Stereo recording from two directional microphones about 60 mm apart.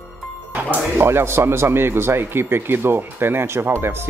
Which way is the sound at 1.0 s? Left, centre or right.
Right.